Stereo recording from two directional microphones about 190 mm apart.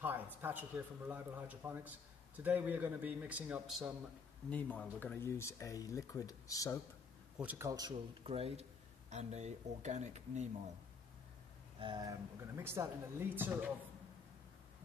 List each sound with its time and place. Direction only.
0.0 s a man's voice: 10° right (ahead or behind)
4.5 s speech: 5° left (ahead or behind)
7.3 s a man's voice: 10° right (ahead or behind)
8.3 s speech: 30° right (ahead or behind)
11.8 s a man's voice: 20° right (ahead or behind)